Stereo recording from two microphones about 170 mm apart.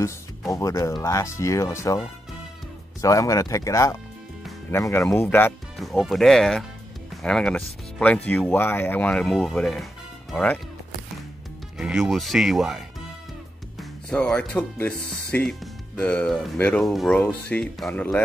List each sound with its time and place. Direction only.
0.5 s speech: 20° left (ahead or behind)
3.0 s speech: 20° left (ahead or behind)
5.8 s speech: centre (ahead or behind)
11.8 s speech: centre (ahead or behind)